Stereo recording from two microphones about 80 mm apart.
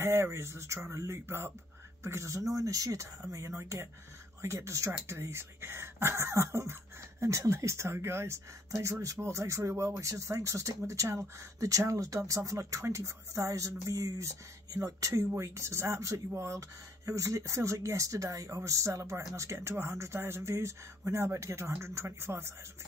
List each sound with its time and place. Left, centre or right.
0.0 s speech: right